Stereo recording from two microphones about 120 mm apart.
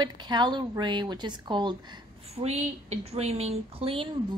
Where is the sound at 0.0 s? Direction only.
40° right (ahead or behind).